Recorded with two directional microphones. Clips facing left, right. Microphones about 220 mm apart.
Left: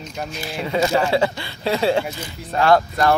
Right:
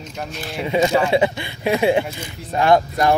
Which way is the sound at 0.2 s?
Centre (ahead or behind).